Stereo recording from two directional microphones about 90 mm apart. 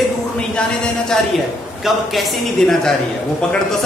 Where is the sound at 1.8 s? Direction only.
Centre (ahead or behind).